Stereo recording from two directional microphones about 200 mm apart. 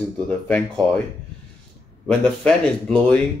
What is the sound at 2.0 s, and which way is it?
A man's voice, 5° left (ahead or behind).